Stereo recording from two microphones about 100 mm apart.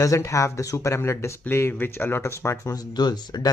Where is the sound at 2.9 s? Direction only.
45° left (ahead or behind).